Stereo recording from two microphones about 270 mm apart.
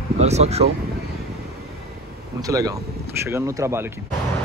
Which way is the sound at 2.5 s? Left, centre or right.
Centre.